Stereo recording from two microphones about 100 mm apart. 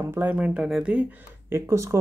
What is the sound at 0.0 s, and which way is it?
Speech, 20° right (ahead or behind).